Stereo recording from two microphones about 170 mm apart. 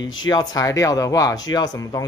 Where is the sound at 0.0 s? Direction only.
25° left (ahead or behind).